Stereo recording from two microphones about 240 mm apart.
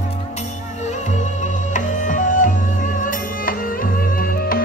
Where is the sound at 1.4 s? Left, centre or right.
Left.